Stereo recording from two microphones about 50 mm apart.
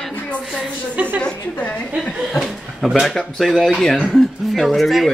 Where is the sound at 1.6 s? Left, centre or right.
Left.